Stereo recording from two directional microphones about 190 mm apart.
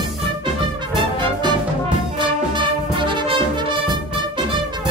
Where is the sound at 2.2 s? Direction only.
25° right (ahead or behind).